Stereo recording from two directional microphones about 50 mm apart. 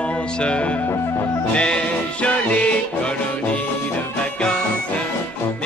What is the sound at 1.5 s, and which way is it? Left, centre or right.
Music, centre.